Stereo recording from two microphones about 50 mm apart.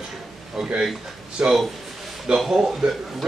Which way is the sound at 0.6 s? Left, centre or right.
Centre.